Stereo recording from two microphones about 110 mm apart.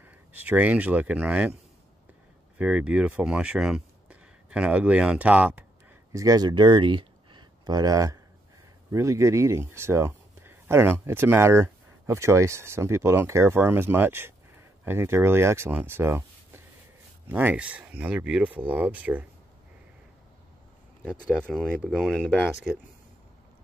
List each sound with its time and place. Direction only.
0.0 s speech: 15° right (ahead or behind)
2.5 s speech: 10° right (ahead or behind)
6.1 s speech: 35° right (ahead or behind); by 19.2 s 10° right (ahead or behind)
21.0 s speech: 5° left (ahead or behind)